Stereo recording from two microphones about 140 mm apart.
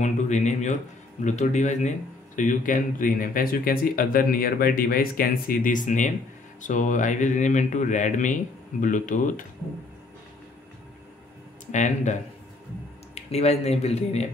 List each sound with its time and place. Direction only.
0.0 s speech: 55° left (ahead or behind)
11.6 s speech: 60° left (ahead or behind)